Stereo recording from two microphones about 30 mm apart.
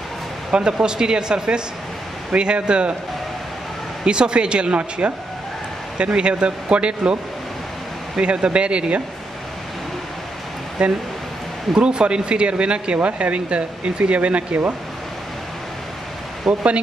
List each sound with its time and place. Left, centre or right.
0.5 s speech: right
4.0 s speech: right
8.2 s speech: right
10.8 s speech: right
16.4 s speech: right